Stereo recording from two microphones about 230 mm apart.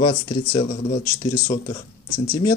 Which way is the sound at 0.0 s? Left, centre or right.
Left.